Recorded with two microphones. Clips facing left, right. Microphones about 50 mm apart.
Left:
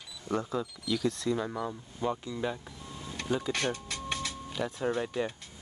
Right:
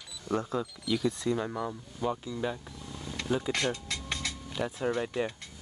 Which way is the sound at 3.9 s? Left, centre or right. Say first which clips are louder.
Even; right.